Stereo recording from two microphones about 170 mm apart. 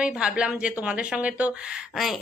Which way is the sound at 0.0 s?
5° right (ahead or behind).